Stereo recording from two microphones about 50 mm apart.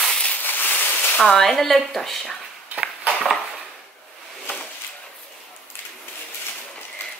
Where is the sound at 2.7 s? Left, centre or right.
Right.